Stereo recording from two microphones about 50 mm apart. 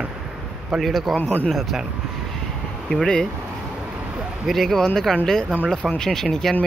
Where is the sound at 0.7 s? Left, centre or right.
Centre.